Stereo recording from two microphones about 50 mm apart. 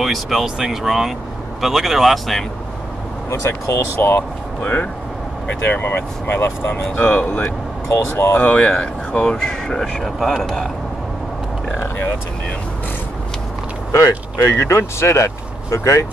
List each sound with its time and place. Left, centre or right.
0.0 s speech: centre
3.3 s speech: left
5.7 s speech: left
8.5 s speech: centre
13.9 s speech: left